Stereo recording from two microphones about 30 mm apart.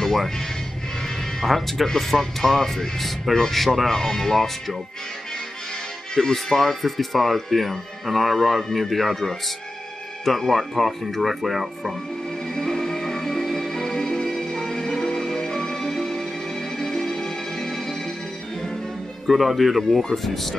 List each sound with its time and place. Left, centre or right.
1.4 s speech: centre
6.1 s speech: centre
12.5 s music: centre
19.2 s speech: centre
20.0 s speech: centre